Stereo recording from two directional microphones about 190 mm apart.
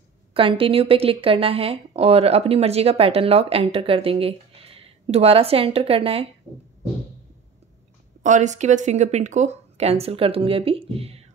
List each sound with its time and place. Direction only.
0.3 s speech: 30° right (ahead or behind)
8.2 s speech: 40° right (ahead or behind)